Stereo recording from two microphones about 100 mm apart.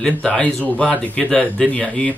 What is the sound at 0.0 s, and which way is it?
Speech, 10° left (ahead or behind).